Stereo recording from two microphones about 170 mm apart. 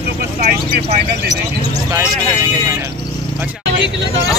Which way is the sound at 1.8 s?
20° right (ahead or behind).